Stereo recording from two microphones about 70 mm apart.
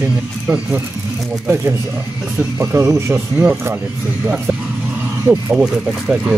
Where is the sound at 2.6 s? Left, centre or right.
Right.